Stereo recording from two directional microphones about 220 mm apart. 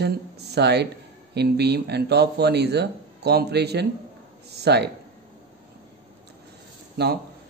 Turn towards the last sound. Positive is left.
turn(degrees=-50)  # may be behind; listen again after turning